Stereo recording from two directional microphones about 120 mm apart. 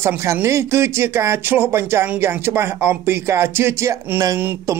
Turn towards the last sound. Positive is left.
turn(degrees=-25)  # may be behind; listen again after turning